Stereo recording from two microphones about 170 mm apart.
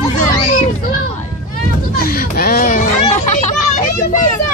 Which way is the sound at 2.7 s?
45° left (ahead or behind).